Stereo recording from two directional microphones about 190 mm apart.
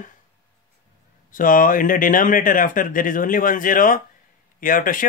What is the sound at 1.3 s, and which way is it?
Speech, 45° left (ahead or behind).